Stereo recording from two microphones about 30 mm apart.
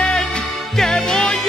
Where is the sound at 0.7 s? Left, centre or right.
Centre.